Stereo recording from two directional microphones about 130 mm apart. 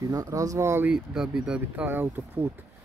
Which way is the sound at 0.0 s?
25° right (ahead or behind).